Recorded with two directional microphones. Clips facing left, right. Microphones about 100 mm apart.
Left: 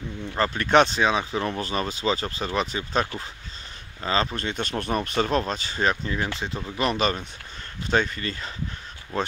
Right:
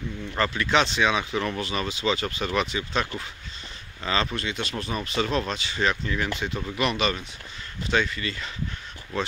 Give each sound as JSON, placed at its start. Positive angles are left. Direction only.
{"t": 0.4, "sound": "speech", "side_deg": 45}
{"t": 4.4, "sound": "speech", "side_deg": 45}
{"t": 6.0, "sound": "speech", "side_deg": 25}